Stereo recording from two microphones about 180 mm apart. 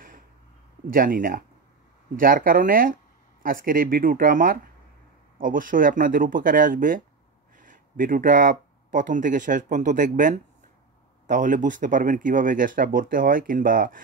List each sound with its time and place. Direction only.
0.8 s speech: 50° right (ahead or behind)